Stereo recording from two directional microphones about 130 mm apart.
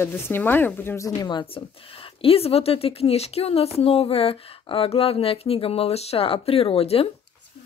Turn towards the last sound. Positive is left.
turn(degrees=45)  # may be behind; listen again after turning